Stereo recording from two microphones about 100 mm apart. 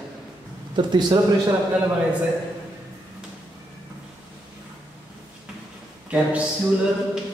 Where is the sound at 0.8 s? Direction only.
45° right (ahead or behind).